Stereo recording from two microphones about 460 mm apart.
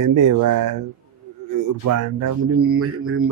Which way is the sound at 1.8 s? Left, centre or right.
Right.